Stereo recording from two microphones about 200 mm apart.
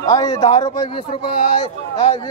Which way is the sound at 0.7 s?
25° left (ahead or behind).